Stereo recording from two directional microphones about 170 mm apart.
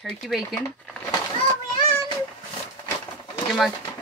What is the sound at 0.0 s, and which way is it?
Speech, centre (ahead or behind).